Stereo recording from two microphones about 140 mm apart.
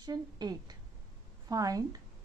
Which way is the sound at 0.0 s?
30° right (ahead or behind).